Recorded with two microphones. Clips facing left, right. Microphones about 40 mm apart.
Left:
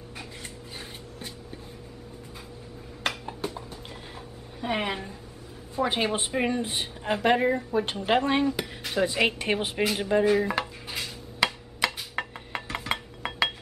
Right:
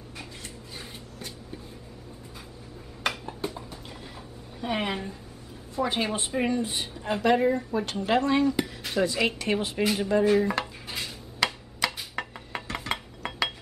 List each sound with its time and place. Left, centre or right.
4.6 s a woman's voice: centre
5.8 s a woman's voice: centre
8.5 s a sound: centre
9.0 s speech: left
9.9 s a woman's voice: centre
10.2 s dishes: centre